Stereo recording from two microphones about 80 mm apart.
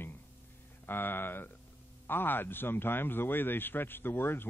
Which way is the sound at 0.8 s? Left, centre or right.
Left.